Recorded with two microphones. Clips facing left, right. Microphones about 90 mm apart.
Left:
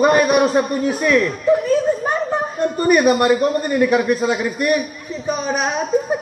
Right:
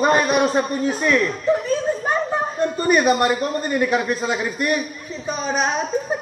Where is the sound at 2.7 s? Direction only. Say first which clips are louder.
Left 3 dB; 25° right (ahead or behind).